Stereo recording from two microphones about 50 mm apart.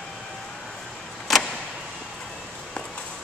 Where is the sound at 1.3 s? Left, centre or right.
Centre.